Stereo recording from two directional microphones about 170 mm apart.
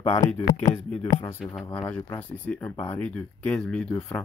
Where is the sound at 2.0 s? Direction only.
10° left (ahead or behind).